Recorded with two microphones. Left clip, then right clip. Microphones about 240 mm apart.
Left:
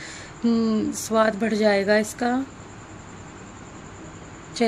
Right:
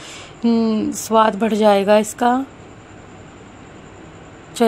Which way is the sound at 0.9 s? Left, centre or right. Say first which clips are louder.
Right 7 dB; centre.